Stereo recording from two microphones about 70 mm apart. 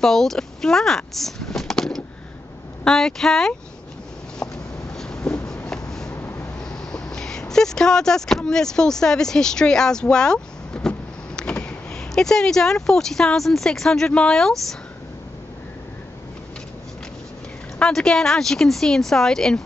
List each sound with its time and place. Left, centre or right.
0.0 s speech: centre
4.4 s a sound: centre
6.1 s vehicle: left
6.6 s speech: centre
17.7 s speech: centre